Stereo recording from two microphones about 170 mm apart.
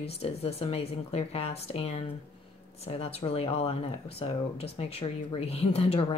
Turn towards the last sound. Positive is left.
turn(degrees=35)  # may be behind; listen again after turning